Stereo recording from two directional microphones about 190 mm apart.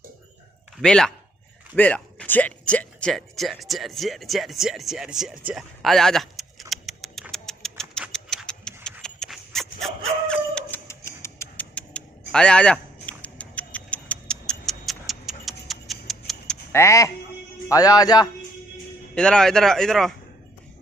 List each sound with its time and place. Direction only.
0.7 s speech: 5° left (ahead or behind)
5.5 s bird: centre (ahead or behind)
9.0 s dog: centre (ahead or behind)
10.9 s a sound: 15° left (ahead or behind)
16.7 s a man's voice: 15° left (ahead or behind)
19.1 s speech: 5° left (ahead or behind)